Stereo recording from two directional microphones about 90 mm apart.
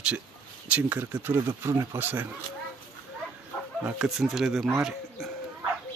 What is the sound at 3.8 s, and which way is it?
Speech, 15° right (ahead or behind).